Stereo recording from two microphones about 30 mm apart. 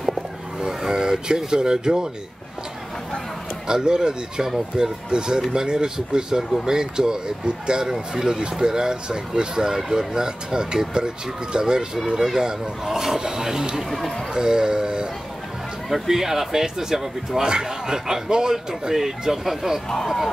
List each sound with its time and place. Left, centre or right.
0.1 s a sound: centre
3.6 s speech: right
13.8 s speech: centre
14.3 s speech: right
15.9 s speech: centre